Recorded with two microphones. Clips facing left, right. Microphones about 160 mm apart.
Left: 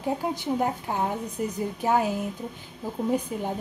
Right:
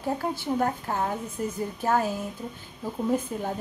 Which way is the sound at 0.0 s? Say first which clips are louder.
Left 1 dB; 15° left (ahead or behind).